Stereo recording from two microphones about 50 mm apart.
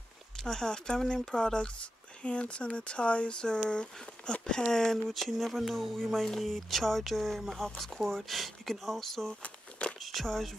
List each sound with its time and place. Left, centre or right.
0.4 s speech: centre
9.4 s a sound: left
9.9 s speech: centre